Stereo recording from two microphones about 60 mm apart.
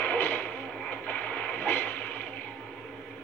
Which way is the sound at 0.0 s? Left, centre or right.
Left.